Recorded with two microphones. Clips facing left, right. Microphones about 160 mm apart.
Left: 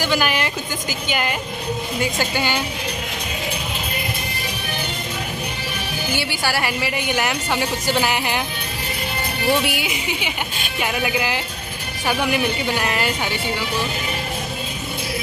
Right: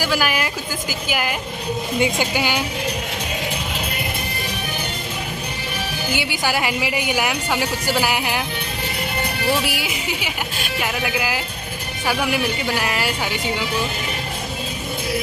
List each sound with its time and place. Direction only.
0.0 s a woman's voice: 5° right (ahead or behind)
6.1 s a woman's voice: 15° right (ahead or behind)
9.5 s speech: centre (ahead or behind)